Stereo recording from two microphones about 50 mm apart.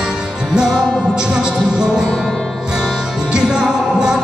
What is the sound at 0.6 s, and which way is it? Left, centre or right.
Music, centre.